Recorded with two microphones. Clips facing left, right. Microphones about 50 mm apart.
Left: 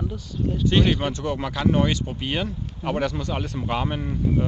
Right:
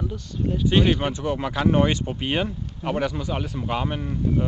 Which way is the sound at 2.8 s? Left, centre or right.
Centre.